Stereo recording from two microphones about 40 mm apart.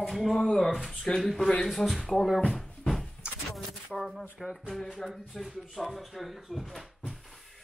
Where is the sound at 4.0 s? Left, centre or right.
Centre.